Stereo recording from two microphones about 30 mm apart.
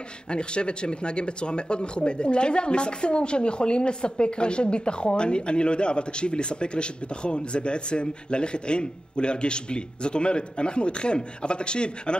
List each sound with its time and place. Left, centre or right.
0.3 s speech: left